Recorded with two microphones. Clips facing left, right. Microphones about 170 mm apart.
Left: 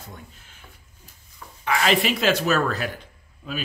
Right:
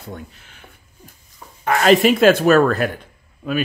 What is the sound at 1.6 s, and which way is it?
A man's voice, 45° right (ahead or behind).